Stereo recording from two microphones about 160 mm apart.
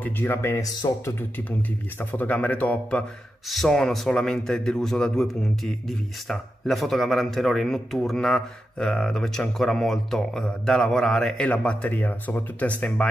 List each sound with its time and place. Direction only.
0.0 s speech: 15° left (ahead or behind)